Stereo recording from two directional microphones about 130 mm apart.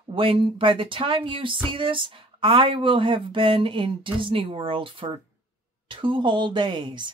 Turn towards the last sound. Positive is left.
turn(degrees=-35)  # may be behind; listen again after turning